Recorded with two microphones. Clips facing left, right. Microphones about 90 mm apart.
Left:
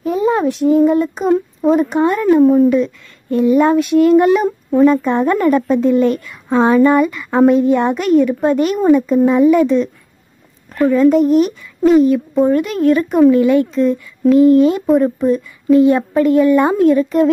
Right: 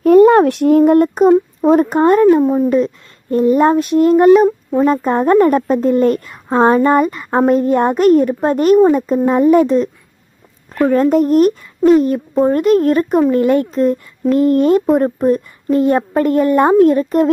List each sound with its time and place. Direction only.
0.0 s a sound: 65° right (ahead or behind)
0.9 s speech: 55° right (ahead or behind)
1.6 s speech: 40° right (ahead or behind)
2.4 s speech: 5° right (ahead or behind)
2.7 s a child's voice: 40° right (ahead or behind)
4.5 s a sound: centre (ahead or behind)
4.8 s a child's voice: 40° right (ahead or behind)
10.9 s a child's voice: 45° right (ahead or behind)